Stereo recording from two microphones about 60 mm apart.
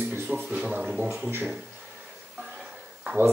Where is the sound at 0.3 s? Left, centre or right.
Centre.